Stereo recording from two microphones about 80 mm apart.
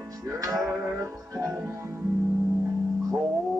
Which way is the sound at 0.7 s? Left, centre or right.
Right.